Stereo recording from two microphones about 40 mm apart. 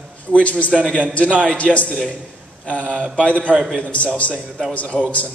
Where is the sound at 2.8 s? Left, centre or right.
Right.